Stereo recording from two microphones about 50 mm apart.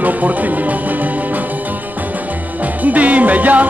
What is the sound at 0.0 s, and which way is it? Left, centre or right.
Music, right.